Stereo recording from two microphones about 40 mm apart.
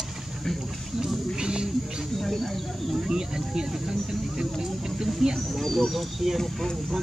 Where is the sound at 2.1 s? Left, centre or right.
Centre.